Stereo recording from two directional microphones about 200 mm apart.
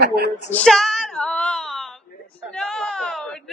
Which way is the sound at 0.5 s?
5° left (ahead or behind).